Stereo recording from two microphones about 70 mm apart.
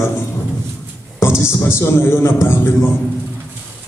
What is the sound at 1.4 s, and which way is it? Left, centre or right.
A man's voice, left.